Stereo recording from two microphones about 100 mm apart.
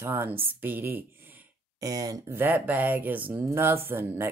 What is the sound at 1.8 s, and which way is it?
Speech, 35° right (ahead or behind).